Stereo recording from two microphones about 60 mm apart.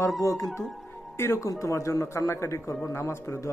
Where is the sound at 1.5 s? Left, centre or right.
Left.